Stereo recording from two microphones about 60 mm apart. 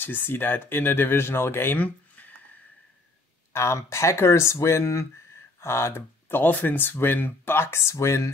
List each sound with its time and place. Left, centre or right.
0.0 s speech: left
3.5 s speech: left